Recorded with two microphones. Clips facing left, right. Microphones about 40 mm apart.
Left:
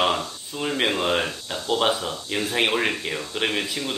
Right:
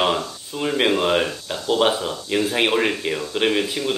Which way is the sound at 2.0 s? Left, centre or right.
Right.